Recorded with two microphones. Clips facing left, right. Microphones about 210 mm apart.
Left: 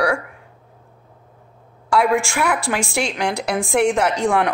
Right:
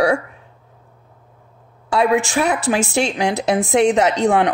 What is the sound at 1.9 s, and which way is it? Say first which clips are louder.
Speech: right 2 dB; 20° right (ahead or behind).